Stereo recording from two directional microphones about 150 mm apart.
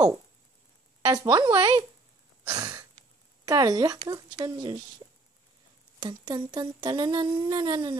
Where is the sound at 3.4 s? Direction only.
25° right (ahead or behind).